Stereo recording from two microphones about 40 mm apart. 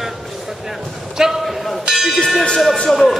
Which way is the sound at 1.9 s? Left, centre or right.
Centre.